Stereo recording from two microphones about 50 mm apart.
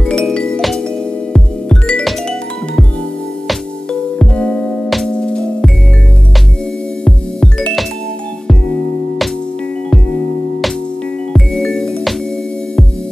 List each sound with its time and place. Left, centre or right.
0.0 s music: centre
3.9 s music: centre
4.8 s music: centre
5.1 s music: centre
7.1 s music: centre
11.3 s music: centre